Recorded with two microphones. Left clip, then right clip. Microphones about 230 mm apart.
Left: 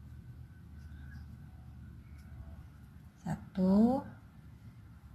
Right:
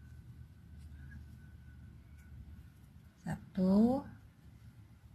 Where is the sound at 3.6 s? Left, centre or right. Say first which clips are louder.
Left 2 dB; right.